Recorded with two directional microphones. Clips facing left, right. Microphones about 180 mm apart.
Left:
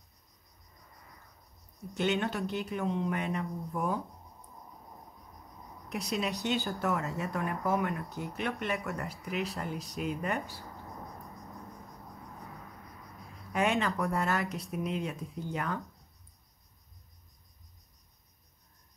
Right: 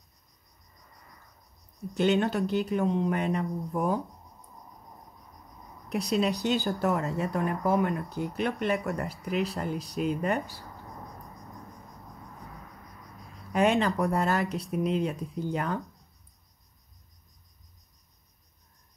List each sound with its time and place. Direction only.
2.0 s speech: 35° right (ahead or behind)
5.9 s speech: 35° right (ahead or behind)
13.5 s speech: 35° right (ahead or behind)